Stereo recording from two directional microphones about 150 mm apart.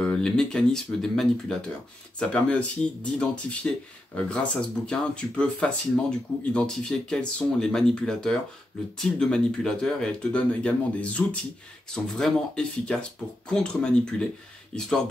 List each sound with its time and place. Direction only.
0.0 s speech: 5° left (ahead or behind)